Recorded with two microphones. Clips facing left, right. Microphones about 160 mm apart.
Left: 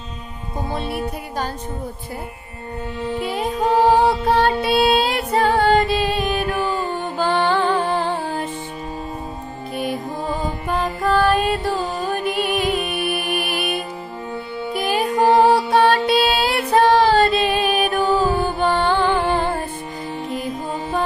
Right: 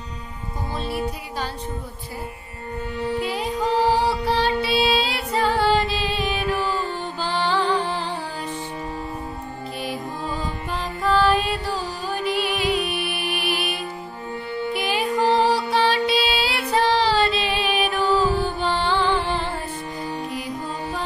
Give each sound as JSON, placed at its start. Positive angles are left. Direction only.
{"t": 0.7, "sound": "music", "side_deg": 60}
{"t": 3.3, "sound": "music", "side_deg": 45}
{"t": 9.8, "sound": "music", "side_deg": 50}